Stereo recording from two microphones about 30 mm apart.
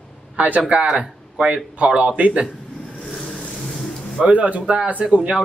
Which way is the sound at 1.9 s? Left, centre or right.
Right.